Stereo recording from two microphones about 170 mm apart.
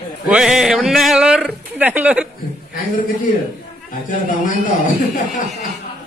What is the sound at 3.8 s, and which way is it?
Speech, 50° left (ahead or behind).